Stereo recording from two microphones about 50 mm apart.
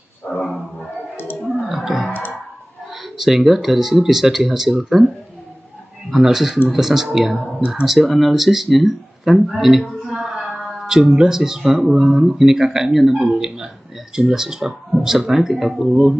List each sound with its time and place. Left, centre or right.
0.4 s roaring cats: centre
1.1 s a sound: left
1.4 s music: centre
2.9 s speech: centre
6.1 s speech: centre